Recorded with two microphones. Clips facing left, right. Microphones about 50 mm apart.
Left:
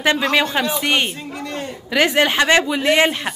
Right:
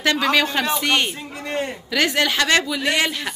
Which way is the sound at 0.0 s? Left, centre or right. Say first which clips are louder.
Left 1 dB; centre.